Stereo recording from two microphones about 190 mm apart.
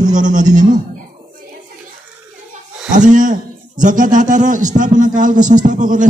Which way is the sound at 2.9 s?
40° right (ahead or behind).